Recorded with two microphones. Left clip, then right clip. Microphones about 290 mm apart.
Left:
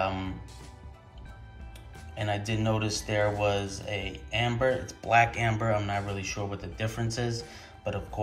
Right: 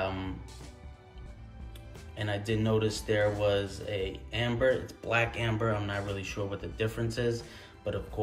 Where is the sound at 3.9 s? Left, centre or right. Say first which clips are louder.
Left 2 dB; right.